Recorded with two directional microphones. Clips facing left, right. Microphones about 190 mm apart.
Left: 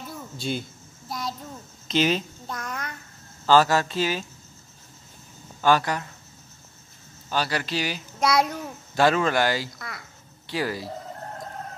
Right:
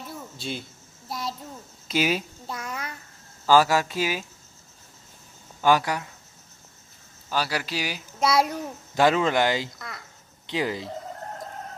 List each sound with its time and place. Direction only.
0.1 s a sound: centre (ahead or behind)
1.9 s a child's voice: 10° right (ahead or behind)
5.6 s a child's voice: 10° right (ahead or behind)
7.2 s a child's voice: 5° right (ahead or behind)
9.8 s speech: 5° left (ahead or behind)
10.4 s speech: 20° right (ahead or behind)